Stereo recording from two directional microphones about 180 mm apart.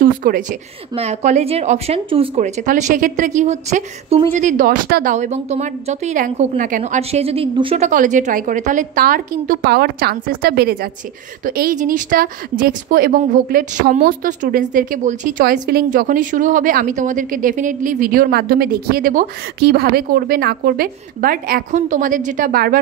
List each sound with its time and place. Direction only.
0.0 s a woman's voice: 50° right (ahead or behind)
0.9 s speech: 35° right (ahead or behind); by 5.1 s 55° right (ahead or behind)
5.1 s a woman's voice: 40° right (ahead or behind)